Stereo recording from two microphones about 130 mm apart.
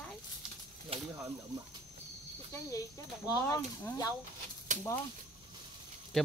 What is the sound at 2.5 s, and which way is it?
Speech, 25° left (ahead or behind).